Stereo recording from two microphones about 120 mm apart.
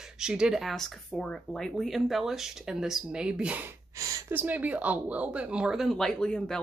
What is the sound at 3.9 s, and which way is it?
Speech, 25° right (ahead or behind).